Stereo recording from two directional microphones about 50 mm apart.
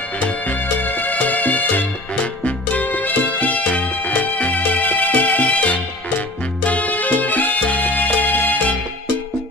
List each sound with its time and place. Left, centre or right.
0.2 s music: left